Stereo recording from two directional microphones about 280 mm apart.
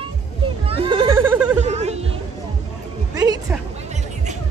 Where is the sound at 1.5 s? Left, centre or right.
Right.